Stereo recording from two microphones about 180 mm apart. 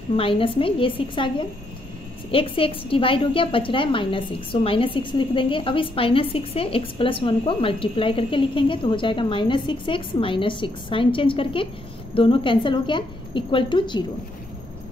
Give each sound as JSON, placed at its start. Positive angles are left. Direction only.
{"t": 0.1, "sound": "a woman's voice", "side_deg": 30}
{"t": 2.3, "sound": "a woman's voice", "side_deg": 30}